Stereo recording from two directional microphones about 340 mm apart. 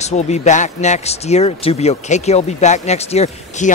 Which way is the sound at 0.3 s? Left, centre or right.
Left.